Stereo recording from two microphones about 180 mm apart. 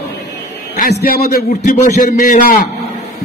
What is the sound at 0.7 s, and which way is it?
Speech, 60° left (ahead or behind).